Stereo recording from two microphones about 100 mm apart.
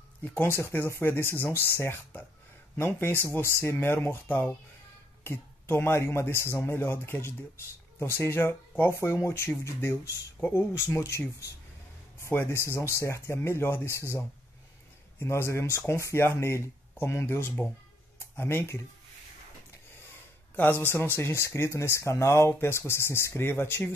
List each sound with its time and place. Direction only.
0.2 s speech: 25° left (ahead or behind)
15.1 s speech: 25° left (ahead or behind)
20.5 s speech: 20° left (ahead or behind)